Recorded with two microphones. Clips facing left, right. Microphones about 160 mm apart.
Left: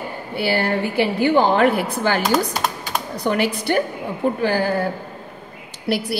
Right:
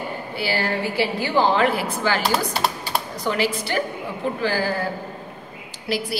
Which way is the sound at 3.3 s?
50° left (ahead or behind).